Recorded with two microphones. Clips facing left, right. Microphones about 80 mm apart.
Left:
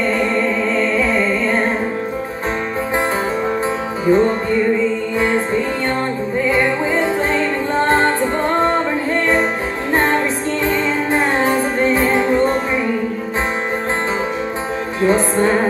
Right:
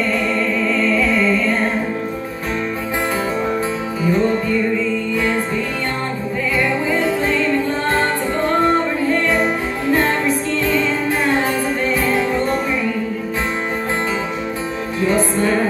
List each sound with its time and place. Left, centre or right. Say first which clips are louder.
0.7 s music: right 1 dB; left
4.0 s music: left 3 dB; left
6.5 s music: even; left
10.6 s music: left 3 dB; left
15.0 s music: left 2 dB; left